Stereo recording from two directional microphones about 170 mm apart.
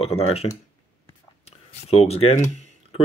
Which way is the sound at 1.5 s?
35° left (ahead or behind).